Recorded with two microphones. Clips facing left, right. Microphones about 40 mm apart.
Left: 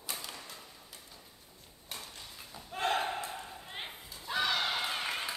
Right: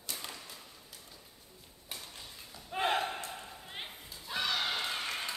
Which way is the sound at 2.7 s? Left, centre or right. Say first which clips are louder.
Right 1 dB; centre.